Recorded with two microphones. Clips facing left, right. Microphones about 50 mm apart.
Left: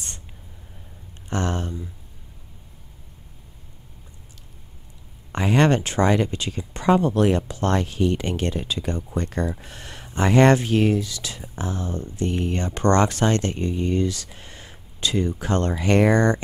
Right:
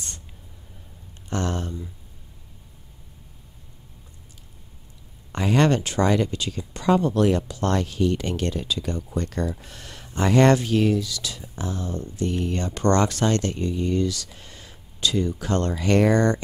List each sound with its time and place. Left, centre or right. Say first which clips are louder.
1.3 s speech: left 1 dB; left
5.3 s speech: left 1 dB; left